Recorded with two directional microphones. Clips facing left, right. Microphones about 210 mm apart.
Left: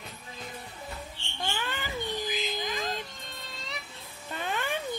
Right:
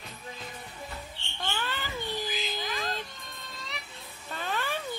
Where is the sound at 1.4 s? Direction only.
15° left (ahead or behind).